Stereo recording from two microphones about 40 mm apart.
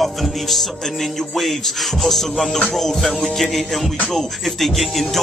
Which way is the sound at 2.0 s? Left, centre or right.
Centre.